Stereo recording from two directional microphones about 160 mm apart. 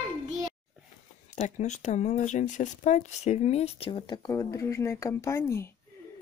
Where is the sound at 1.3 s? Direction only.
45° left (ahead or behind); by 5.7 s 15° left (ahead or behind).